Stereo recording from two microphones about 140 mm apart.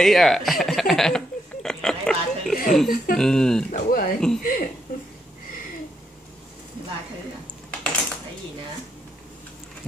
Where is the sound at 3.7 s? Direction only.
85° left.